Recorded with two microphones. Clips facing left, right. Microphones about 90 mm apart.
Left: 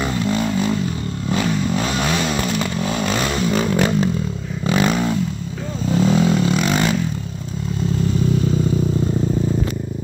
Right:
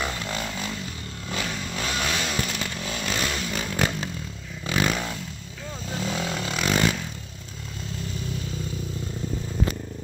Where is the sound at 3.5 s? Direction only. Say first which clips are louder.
Left 9 dB; 50° left (ahead or behind).